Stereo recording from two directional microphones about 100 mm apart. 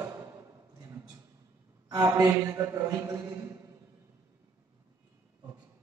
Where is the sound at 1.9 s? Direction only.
40° right (ahead or behind).